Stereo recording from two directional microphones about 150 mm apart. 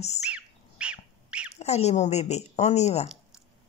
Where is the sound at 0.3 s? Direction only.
10° right (ahead or behind).